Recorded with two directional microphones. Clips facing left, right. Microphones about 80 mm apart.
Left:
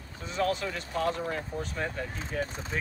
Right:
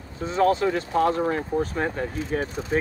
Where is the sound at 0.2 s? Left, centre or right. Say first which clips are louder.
Right 9 dB; right.